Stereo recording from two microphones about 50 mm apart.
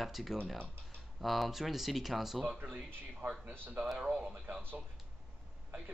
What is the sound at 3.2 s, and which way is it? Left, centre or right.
Speech, right.